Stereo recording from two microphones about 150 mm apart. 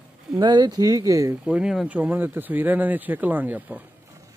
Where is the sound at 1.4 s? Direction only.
5° right (ahead or behind).